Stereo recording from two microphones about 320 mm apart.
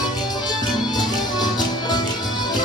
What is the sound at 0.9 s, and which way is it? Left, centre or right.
Music, centre.